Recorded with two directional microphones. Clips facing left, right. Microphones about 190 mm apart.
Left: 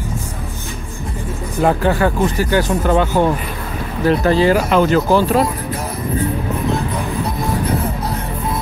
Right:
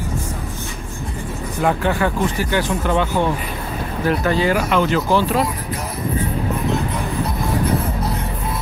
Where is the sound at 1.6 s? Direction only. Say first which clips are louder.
Left 3 dB; 40° left (ahead or behind).